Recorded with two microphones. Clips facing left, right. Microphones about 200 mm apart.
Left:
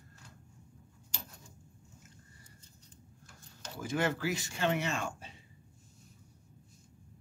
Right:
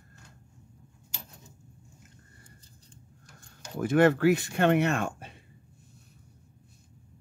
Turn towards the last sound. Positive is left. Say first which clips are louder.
# right 7 dB
turn(degrees=-55)  # may be behind; listen again after turning